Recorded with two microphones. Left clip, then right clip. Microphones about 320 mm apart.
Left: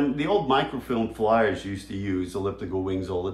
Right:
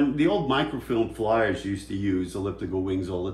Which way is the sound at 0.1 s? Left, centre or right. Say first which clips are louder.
Left 1 dB; centre.